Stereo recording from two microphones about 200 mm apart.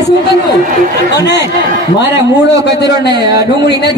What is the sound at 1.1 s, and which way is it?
Speech, 60° left (ahead or behind).